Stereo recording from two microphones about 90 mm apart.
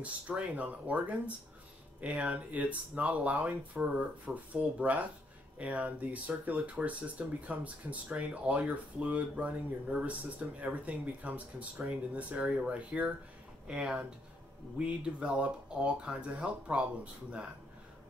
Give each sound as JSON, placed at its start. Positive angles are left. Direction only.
{"t": 0.0, "sound": "speech", "side_deg": -15}